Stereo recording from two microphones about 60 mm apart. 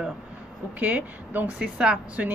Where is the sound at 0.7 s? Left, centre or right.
Right.